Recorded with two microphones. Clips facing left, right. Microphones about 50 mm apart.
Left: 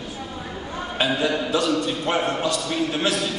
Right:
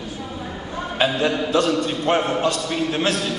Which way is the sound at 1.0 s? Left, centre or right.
Right.